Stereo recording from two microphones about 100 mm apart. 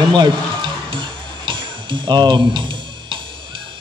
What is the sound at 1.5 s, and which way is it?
Tick-tock, 50° right (ahead or behind).